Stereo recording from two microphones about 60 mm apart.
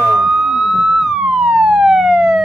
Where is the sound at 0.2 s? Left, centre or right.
Centre.